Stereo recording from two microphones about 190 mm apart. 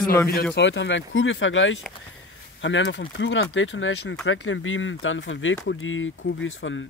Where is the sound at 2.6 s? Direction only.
75° left (ahead or behind).